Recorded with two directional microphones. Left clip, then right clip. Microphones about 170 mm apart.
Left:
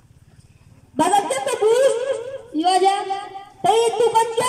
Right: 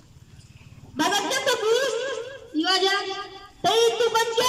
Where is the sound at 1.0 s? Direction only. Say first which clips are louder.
Left 5 dB; 45° left (ahead or behind).